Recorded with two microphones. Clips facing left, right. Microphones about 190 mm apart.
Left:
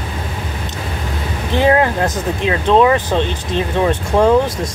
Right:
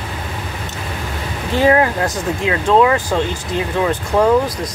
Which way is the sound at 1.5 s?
20° left (ahead or behind).